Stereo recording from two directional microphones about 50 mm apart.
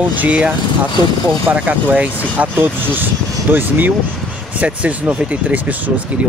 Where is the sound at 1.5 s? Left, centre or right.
Right.